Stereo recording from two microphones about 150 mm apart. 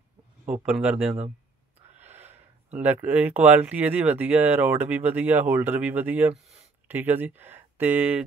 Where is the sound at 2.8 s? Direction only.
10° right (ahead or behind).